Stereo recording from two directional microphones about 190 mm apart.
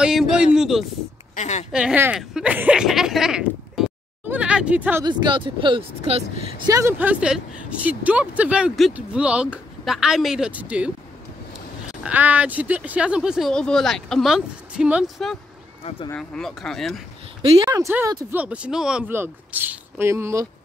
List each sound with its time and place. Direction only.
0.0 s speech: 5° right (ahead or behind)
1.3 s a woman's voice: 35° left (ahead or behind)
1.7 s speech: 5° right (ahead or behind)
5.0 s speech: 25° right (ahead or behind)
6.7 s speech: 15° right (ahead or behind)
12.0 s speech: 10° right (ahead or behind)
17.4 s speech: 30° right (ahead or behind)
17.6 s speech: 15° right (ahead or behind)